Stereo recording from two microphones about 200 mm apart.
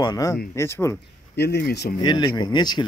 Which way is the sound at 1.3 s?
55° left (ahead or behind).